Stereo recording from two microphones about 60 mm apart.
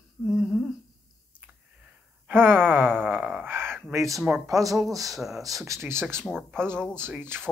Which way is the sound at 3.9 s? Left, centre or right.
Right.